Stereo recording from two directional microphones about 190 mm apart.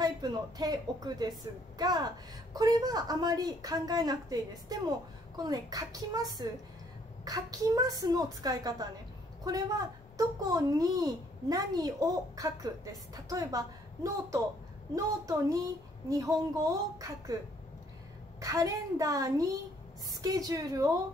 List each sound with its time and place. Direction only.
0.0 s a woman's voice: 20° right (ahead or behind)
10.1 s a woman's voice: 20° right (ahead or behind)
18.4 s a woman's voice: 15° right (ahead or behind)